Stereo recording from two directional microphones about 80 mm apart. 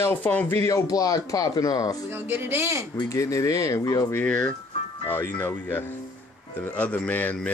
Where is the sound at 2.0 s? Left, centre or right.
Right.